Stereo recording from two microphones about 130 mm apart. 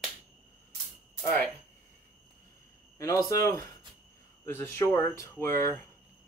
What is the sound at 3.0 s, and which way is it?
Speech, 25° left (ahead or behind).